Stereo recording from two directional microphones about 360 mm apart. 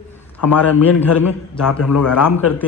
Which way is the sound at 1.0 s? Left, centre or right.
Centre.